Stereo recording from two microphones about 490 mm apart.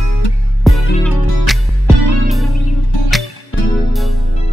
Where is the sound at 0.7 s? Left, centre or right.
Centre.